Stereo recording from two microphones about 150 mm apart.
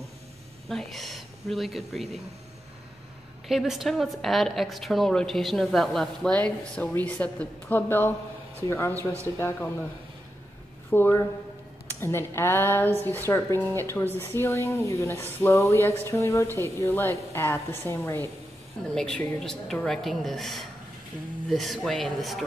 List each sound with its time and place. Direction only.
0.7 s a woman's voice: centre (ahead or behind)
3.4 s a woman's voice: centre (ahead or behind); by 9.7 s 15° left (ahead or behind)
10.9 s a woman's voice: 15° left (ahead or behind)
18.9 s a woman's voice: 5° left (ahead or behind)